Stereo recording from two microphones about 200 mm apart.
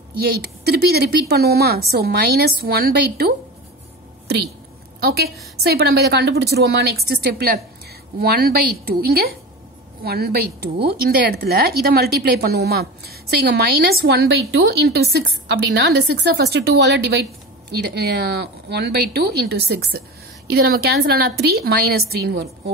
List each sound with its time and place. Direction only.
0.4 s a woman's voice: 55° right (ahead or behind)
5.0 s a woman's voice: 55° right (ahead or behind)